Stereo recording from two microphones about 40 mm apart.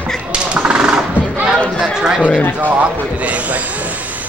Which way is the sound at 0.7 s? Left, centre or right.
Right.